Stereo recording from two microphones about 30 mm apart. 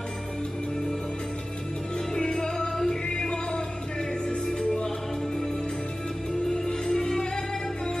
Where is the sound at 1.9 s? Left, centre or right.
Centre.